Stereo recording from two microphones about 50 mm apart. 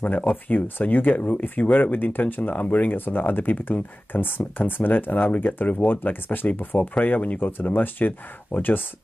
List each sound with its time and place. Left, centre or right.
0.0 s speech: left